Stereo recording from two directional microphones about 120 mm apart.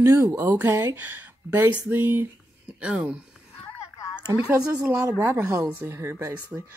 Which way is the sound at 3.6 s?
25° left (ahead or behind).